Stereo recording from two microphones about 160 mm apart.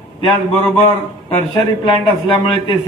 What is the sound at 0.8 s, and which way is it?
A man's voice, 40° left (ahead or behind).